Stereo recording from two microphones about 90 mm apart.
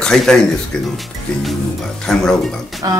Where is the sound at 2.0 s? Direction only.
5° left (ahead or behind).